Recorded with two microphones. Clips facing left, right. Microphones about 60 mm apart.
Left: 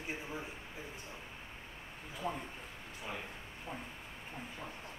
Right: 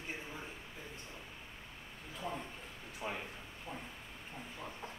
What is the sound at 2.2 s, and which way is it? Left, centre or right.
Speech, centre.